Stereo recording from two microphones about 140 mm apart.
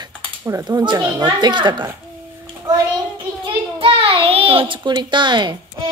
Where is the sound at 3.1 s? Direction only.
35° right (ahead or behind).